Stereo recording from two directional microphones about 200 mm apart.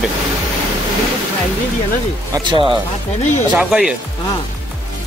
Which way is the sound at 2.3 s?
25° right (ahead or behind).